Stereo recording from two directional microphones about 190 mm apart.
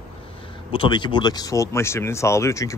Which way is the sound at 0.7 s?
25° left (ahead or behind).